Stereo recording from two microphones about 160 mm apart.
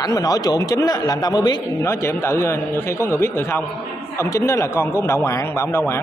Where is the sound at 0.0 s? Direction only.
20° left (ahead or behind).